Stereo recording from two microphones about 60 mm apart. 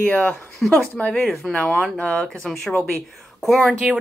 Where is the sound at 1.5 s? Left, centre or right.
Centre.